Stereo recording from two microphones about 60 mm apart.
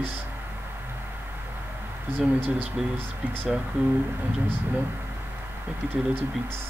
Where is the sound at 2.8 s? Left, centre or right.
Centre.